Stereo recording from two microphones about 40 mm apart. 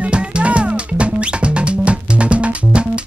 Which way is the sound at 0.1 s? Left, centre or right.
Right.